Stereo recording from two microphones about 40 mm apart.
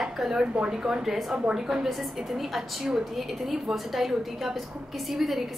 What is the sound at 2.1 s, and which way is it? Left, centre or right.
A woman's voice, centre.